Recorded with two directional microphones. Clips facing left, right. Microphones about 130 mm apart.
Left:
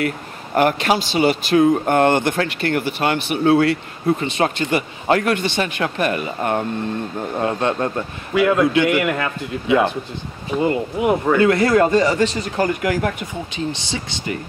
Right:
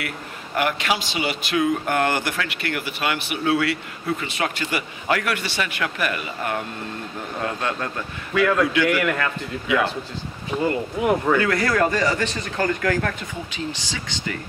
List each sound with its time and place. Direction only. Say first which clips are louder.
0.6 s a man's voice: left 6 dB; 40° left (ahead or behind)
8.4 s a man's voice: left 4 dB; 15° left (ahead or behind)
11.0 s a man's voice: left 2 dB; 5° left (ahead or behind)
11.3 s speech: left 6 dB; 20° left (ahead or behind)